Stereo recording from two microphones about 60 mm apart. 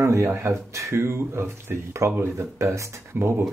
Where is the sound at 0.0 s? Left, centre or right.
Right.